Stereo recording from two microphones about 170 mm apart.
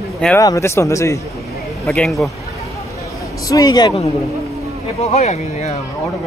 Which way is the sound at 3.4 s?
20° left (ahead or behind).